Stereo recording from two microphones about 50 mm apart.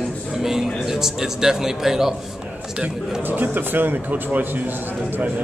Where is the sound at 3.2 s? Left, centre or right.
Right.